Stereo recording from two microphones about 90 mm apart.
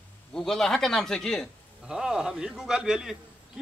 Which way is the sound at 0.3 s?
5° left (ahead or behind).